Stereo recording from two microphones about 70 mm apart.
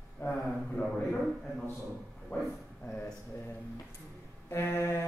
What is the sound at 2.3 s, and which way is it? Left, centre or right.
Speech, left.